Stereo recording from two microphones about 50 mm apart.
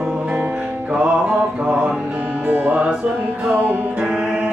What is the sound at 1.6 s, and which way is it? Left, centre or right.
Music, centre.